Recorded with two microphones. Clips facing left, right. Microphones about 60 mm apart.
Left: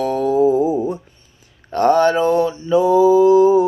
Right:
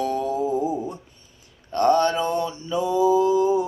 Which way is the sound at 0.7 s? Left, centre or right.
Left.